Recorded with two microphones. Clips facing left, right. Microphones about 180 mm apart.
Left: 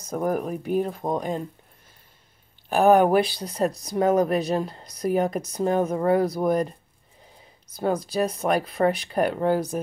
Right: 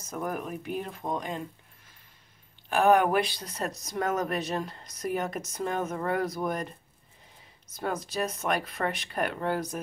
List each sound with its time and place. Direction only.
0.0 s speech: 40° left (ahead or behind)
2.7 s speech: 35° left (ahead or behind)
7.7 s speech: 35° left (ahead or behind)